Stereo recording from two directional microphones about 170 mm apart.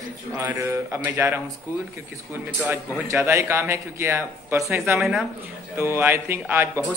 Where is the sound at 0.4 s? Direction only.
10° right (ahead or behind).